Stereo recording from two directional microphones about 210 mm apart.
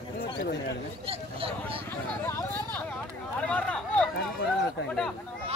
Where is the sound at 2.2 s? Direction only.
10° left (ahead or behind).